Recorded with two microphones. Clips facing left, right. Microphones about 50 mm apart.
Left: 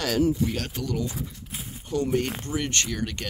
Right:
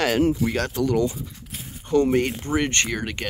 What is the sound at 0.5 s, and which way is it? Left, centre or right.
Speech, right.